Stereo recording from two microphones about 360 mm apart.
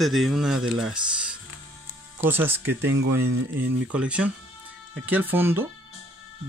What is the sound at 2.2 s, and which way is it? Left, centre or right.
Speech, centre.